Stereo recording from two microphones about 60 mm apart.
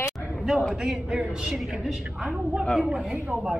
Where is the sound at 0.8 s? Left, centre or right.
Centre.